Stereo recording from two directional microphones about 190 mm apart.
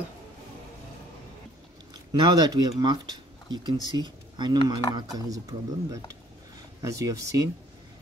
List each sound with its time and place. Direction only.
2.1 s speech: 20° right (ahead or behind)